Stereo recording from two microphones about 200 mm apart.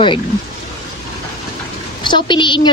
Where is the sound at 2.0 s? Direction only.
25° left (ahead or behind).